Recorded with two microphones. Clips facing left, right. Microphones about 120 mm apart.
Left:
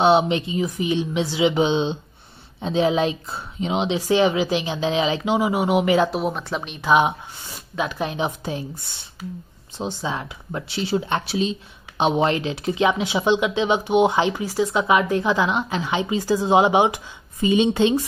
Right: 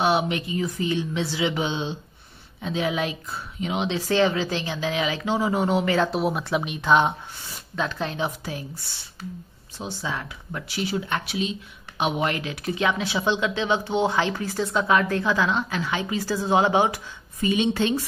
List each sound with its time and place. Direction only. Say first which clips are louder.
0.0 s speech: left 5 dB; 25° left (ahead or behind)
6.1 s speech: right 1 dB; 5° right (ahead or behind)
6.9 s speech: left 2 dB; 10° left (ahead or behind)
9.8 s speech: left 4 dB; 20° left (ahead or behind)